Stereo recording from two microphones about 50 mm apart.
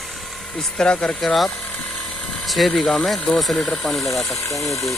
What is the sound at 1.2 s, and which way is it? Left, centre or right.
Speech, centre.